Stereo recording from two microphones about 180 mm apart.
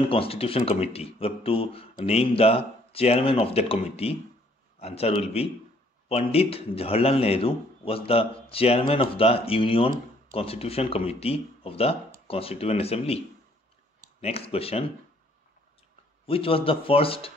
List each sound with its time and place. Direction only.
0.1 s a man's voice: 30° left (ahead or behind)
14.2 s a man's voice: 35° left (ahead or behind)
16.3 s a man's voice: 30° left (ahead or behind)